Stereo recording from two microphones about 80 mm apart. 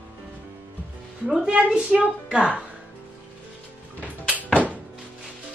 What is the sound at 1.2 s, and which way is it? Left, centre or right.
A woman's voice, centre.